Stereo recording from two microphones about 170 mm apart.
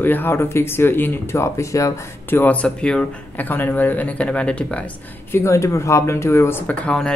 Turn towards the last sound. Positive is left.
turn(degrees=5)  # may be behind; listen again after turning